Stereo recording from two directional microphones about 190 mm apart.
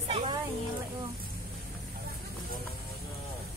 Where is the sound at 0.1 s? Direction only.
35° right (ahead or behind).